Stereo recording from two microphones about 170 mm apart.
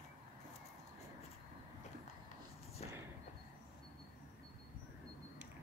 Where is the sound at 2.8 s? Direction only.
40° left (ahead or behind).